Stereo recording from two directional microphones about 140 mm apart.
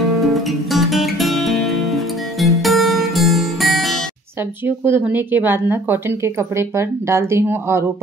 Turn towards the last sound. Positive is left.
turn(degrees=-20)  # may be behind; listen again after turning